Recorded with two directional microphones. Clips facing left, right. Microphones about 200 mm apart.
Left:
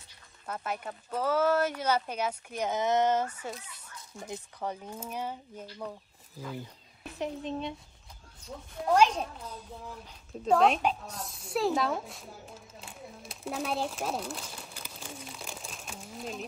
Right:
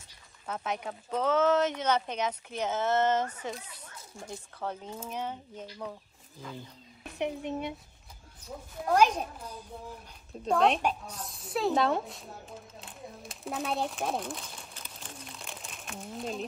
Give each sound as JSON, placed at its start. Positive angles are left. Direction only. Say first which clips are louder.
{"t": 0.5, "sound": "speech", "louder": "right 1 dB", "side_deg": 5}
{"t": 7.4, "sound": "a child's voice", "louder": "right 1 dB", "side_deg": -15}
{"t": 8.9, "sound": "a child's voice", "louder": "even", "side_deg": -10}
{"t": 10.5, "sound": "speech", "louder": "left 1 dB", "side_deg": 0}
{"t": 12.8, "sound": "a sound", "louder": "right 1 dB", "side_deg": 0}